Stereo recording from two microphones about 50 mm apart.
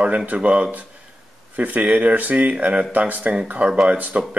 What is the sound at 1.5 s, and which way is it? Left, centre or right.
Speech, right.